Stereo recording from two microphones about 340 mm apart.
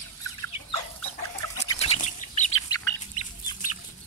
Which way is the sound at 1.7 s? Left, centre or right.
Centre.